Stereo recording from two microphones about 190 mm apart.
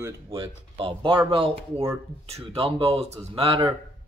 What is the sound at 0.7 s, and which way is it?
Speech, 25° right (ahead or behind).